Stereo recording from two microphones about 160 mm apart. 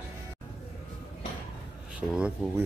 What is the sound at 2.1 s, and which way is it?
Speech, 5° right (ahead or behind).